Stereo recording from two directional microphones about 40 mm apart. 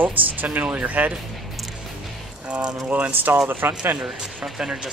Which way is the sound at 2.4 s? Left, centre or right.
Right.